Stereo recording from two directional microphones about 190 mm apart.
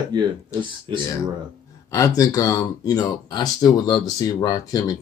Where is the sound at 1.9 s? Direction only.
15° left (ahead or behind).